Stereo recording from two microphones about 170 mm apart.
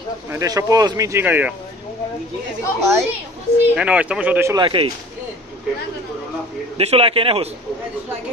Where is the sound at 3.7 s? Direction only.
5° right (ahead or behind).